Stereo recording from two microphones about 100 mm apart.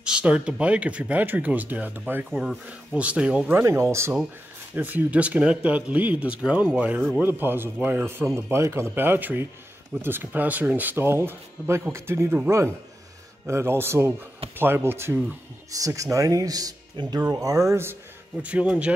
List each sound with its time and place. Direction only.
0.0 s speech: 10° right (ahead or behind)
2.3 s speech: 5° right (ahead or behind)
3.5 s speech: 30° right (ahead or behind)
4.7 s speech: 20° right (ahead or behind)
15.8 s speech: 35° right (ahead or behind)
17.0 s speech: 50° right (ahead or behind)
17.3 s speech: 35° right (ahead or behind)
18.4 s speech: 10° right (ahead or behind)